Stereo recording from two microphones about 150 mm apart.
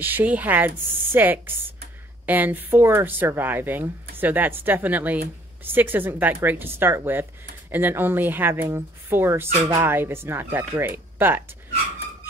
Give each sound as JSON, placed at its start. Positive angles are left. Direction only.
{"t": 0.0, "sound": "speech", "side_deg": -10}